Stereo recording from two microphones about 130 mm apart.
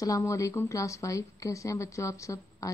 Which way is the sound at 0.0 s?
25° left (ahead or behind).